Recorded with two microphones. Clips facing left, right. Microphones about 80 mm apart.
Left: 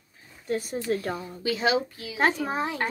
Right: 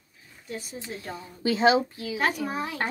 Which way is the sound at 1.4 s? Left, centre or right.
Right.